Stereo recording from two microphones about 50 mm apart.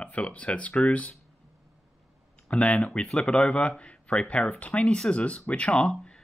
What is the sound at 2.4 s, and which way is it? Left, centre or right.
Speech, left.